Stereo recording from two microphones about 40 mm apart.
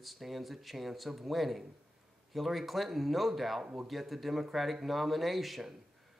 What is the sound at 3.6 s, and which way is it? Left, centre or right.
Speech, right.